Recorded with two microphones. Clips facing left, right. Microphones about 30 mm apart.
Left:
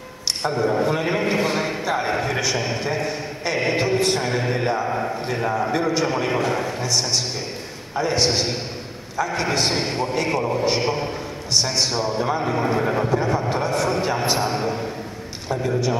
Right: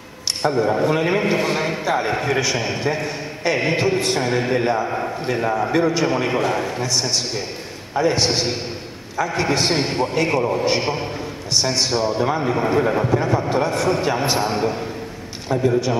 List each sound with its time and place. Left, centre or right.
0.4 s a man's voice: centre